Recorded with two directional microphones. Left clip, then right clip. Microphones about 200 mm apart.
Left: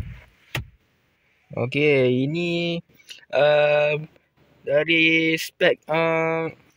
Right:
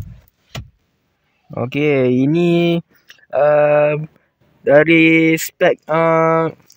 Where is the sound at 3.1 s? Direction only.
5° right (ahead or behind).